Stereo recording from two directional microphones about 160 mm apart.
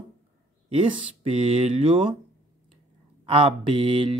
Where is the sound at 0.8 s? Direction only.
35° right (ahead or behind).